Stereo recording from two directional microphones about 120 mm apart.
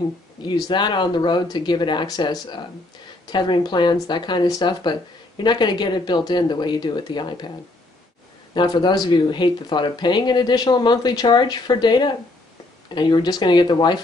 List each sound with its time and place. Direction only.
0.4 s speech: 40° left (ahead or behind)
8.5 s speech: 40° left (ahead or behind)